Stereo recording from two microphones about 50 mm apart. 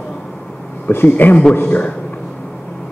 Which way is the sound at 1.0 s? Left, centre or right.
Left.